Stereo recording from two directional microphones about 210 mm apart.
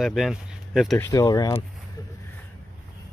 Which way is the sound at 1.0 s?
15° left (ahead or behind).